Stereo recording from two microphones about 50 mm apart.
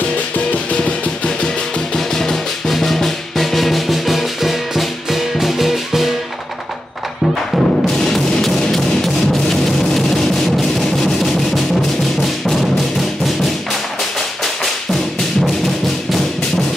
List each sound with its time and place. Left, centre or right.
0.7 s music: centre
2.0 s drum: centre
7.5 s music: centre